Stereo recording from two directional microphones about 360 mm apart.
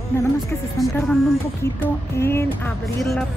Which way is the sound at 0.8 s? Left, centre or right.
Centre.